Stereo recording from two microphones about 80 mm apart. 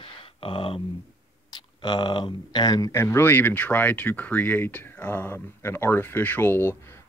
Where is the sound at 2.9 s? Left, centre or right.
Left.